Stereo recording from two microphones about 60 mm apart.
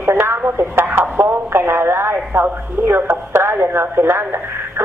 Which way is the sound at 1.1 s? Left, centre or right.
Right.